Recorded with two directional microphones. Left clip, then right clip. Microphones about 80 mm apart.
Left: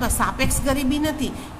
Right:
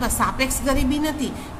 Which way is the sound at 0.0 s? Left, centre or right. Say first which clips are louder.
Right 1 dB; left.